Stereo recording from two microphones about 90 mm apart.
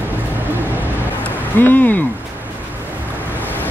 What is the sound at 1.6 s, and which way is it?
Speech, 20° left (ahead or behind).